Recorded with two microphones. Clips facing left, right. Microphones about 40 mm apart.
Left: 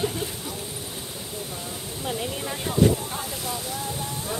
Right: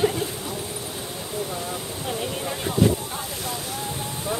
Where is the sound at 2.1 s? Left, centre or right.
Centre.